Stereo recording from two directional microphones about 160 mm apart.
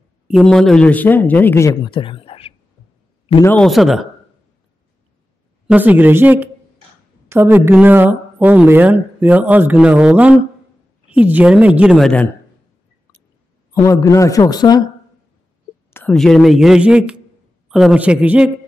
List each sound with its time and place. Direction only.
0.3 s speech: centre (ahead or behind); by 2.5 s 35° left (ahead or behind)
3.4 s a man's voice: 5° left (ahead or behind)
5.7 s a woman's voice: 10° right (ahead or behind)
13.7 s speech: 20° left (ahead or behind)
15.9 s a sound: 15° left (ahead or behind)
16.2 s a man's voice: centre (ahead or behind)